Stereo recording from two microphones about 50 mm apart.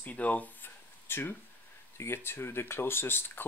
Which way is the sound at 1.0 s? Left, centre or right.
Left.